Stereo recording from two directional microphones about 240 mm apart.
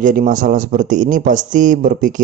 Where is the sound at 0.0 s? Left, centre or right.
Right.